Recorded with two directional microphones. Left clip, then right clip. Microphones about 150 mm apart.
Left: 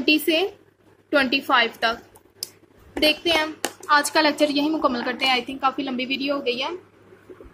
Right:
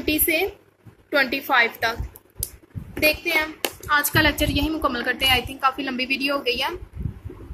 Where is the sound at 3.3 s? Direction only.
50° left (ahead or behind); by 6.0 s 30° left (ahead or behind).